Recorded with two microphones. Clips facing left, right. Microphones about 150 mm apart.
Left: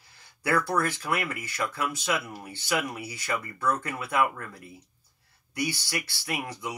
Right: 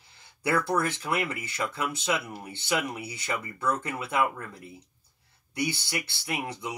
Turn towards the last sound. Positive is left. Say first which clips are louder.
# even
turn(degrees=-25)  # may be behind; listen again after turning